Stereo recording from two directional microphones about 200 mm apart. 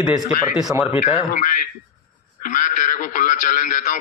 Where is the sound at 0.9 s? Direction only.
30° left (ahead or behind).